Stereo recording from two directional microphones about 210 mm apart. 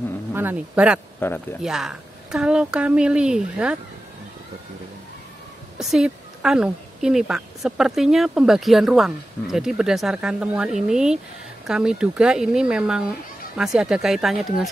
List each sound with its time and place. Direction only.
0.3 s speech: 10° right (ahead or behind)
1.2 s speech: 10° left (ahead or behind)
1.6 s a woman's voice: centre (ahead or behind)
5.8 s a woman's voice: centre (ahead or behind)